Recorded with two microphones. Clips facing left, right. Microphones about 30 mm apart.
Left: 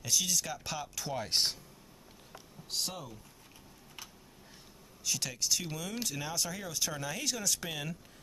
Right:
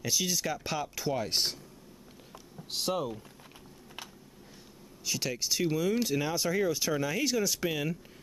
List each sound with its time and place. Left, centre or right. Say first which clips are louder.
0.0 s speech: right 2 dB; centre
2.7 s speech: right 7 dB; right
5.0 s speech: right 3 dB; centre